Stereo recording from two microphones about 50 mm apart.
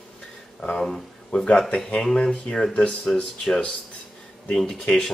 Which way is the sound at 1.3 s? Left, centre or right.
Left.